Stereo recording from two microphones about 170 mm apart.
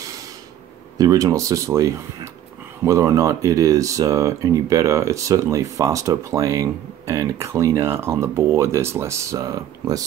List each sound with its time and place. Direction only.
0.9 s speech: 20° right (ahead or behind)